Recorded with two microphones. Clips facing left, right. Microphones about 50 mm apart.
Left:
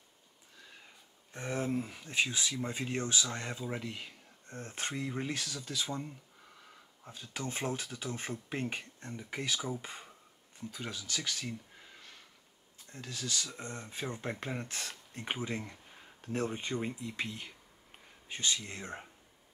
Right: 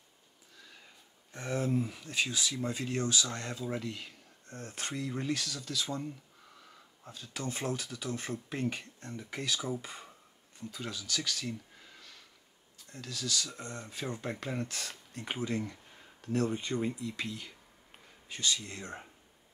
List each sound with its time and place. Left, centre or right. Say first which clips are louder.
1.3 s speech: right 2 dB; left
2.0 s speech: left 1 dB; left
7.1 s speech: right 1 dB; left
12.7 s speech: right 1 dB; left